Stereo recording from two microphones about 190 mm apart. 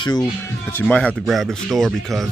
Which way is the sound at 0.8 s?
5° left (ahead or behind).